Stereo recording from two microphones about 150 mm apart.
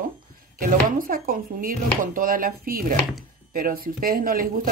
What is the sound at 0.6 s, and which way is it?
Speech, 65° right (ahead or behind).